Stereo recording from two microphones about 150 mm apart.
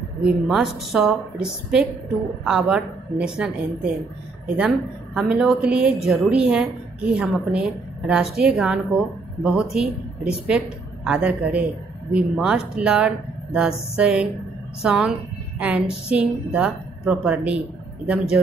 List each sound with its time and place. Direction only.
0.2 s a woman's voice: 5° right (ahead or behind)